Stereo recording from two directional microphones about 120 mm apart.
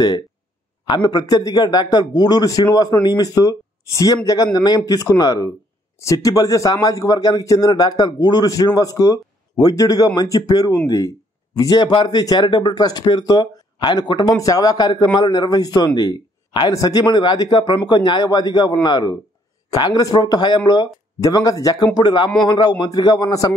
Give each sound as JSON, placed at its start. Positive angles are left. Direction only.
{"t": 0.8, "sound": "a man's voice", "side_deg": 35}